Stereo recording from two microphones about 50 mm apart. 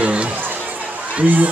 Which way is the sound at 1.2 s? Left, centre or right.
Right.